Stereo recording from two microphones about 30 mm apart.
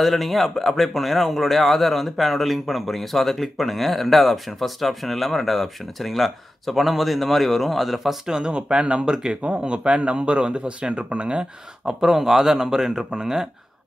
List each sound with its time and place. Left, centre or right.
0.0 s speech: centre
8.3 s speech: right
9.1 s a man's voice: centre
9.6 s speech: right
12.0 s a man's voice: centre